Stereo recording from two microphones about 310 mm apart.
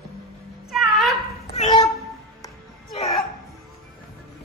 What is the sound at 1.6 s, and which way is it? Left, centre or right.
Meow, centre.